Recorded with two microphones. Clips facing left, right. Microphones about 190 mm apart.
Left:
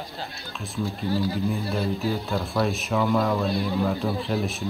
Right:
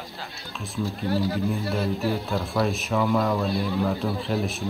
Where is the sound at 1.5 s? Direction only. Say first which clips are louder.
Even; centre (ahead or behind).